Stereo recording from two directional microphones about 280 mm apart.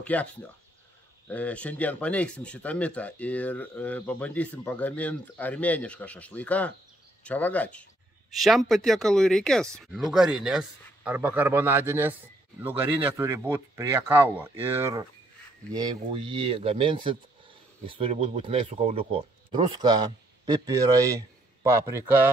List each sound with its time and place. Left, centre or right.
0.0 s speech: centre